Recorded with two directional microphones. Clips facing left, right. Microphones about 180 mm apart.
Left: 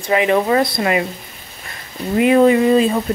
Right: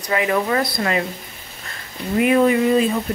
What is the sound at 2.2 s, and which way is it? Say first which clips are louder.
Speech: left 4 dB; 25° left (ahead or behind).